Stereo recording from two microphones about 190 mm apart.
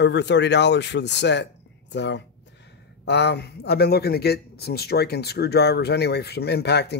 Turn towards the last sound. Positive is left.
turn(degrees=60)  # may be behind; listen again after turning